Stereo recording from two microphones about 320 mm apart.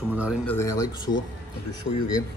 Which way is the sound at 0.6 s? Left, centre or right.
Centre.